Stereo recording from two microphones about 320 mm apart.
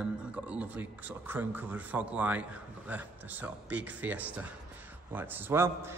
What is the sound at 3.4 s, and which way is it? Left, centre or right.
A man's voice, centre.